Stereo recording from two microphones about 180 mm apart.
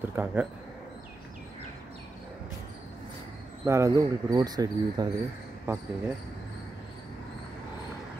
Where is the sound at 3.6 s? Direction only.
15° right (ahead or behind).